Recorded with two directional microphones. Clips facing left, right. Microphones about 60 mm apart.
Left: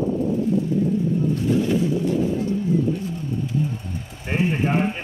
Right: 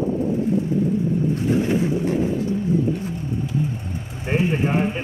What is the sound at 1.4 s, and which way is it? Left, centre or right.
Boat, right.